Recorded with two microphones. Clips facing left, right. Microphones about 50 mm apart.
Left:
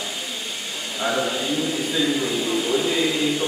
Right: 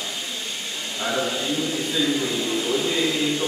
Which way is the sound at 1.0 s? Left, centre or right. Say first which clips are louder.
Left 2 dB; centre.